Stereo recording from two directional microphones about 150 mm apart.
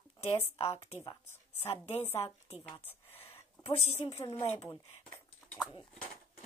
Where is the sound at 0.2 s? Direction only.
45° left (ahead or behind).